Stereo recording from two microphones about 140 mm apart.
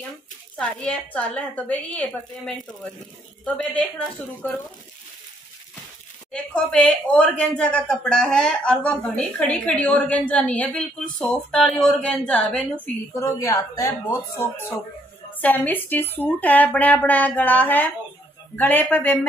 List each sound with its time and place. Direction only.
0.6 s speech: 10° left (ahead or behind)
6.3 s speech: 5° left (ahead or behind)
13.1 s a woman's voice: 20° left (ahead or behind)
15.4 s speech: 10° left (ahead or behind)